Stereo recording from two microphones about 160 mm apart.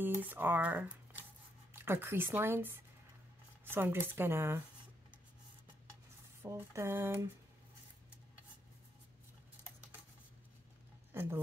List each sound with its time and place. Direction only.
0.0 s speech: 10° right (ahead or behind)
6.4 s speech: 15° right (ahead or behind)